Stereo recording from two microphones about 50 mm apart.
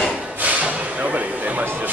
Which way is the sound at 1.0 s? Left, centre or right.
Right.